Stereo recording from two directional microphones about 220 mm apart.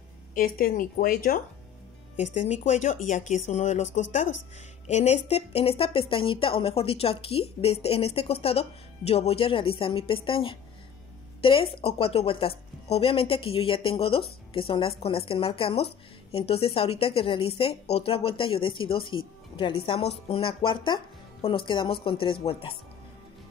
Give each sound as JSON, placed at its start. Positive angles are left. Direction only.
{"t": 0.3, "sound": "a woman's voice", "side_deg": 40}